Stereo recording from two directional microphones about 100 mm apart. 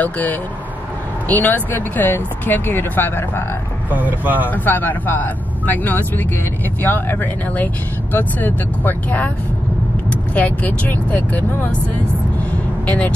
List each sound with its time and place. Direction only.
0.0 s speech: 15° left (ahead or behind)
3.9 s speech: 15° right (ahead or behind)
4.5 s speech: 20° left (ahead or behind)
12.4 s vehicle: 15° left (ahead or behind)